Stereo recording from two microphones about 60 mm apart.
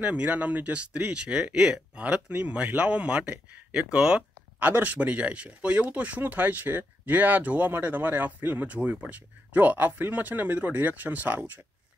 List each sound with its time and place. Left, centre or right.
0.0 s speech: right
4.6 s speech: right